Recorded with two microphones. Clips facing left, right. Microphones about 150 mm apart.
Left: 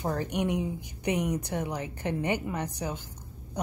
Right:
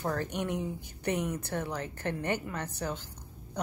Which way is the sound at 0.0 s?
15° left (ahead or behind).